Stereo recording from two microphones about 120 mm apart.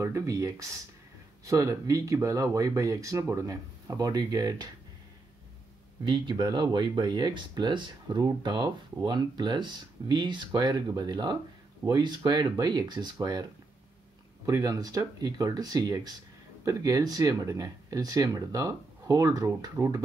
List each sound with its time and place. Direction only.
0.0 s speech: 25° right (ahead or behind)
6.0 s speech: 40° right (ahead or behind)